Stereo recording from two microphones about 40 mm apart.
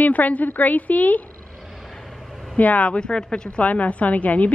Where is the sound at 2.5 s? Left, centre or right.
Left.